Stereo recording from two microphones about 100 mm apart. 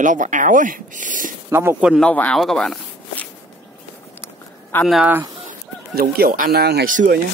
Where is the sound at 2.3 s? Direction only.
5° left (ahead or behind).